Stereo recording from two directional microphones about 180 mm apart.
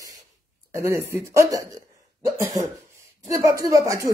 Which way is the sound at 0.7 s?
15° right (ahead or behind).